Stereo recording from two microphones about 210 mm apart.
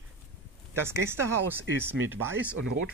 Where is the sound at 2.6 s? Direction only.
70° right (ahead or behind).